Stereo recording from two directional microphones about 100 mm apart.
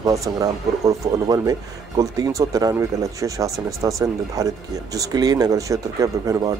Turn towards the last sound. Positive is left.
turn(degrees=-40)  # may be behind; listen again after turning